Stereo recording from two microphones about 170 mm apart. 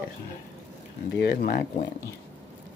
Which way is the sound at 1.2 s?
65° left (ahead or behind).